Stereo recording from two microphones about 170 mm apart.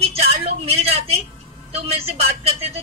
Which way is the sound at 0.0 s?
35° right (ahead or behind).